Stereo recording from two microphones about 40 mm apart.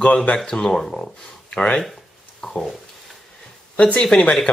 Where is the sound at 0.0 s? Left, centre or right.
Left.